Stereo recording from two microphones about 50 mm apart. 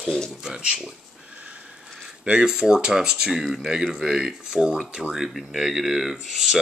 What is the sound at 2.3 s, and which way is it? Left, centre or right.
Speech, right.